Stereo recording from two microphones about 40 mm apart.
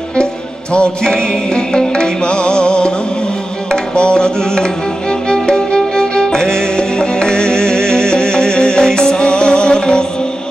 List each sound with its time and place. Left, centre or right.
1.0 s music: centre